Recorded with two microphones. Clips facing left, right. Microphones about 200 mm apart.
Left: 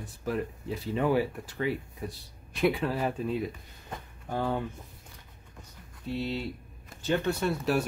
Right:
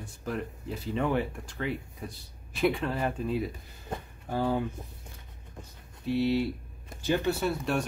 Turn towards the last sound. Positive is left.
turn(degrees=5)  # may be behind; listen again after turning